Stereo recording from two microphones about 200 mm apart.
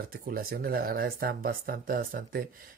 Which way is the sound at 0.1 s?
45° right (ahead or behind).